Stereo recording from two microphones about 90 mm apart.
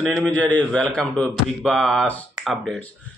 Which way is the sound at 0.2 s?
15° left (ahead or behind).